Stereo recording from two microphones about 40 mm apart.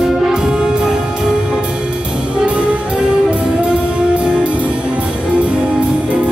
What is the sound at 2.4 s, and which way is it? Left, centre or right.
Music, right.